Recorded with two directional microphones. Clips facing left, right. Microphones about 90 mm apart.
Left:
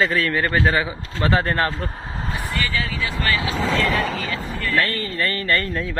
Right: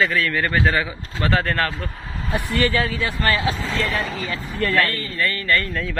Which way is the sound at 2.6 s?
55° right (ahead or behind).